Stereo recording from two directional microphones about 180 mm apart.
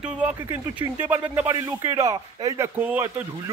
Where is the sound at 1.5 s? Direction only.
20° right (ahead or behind).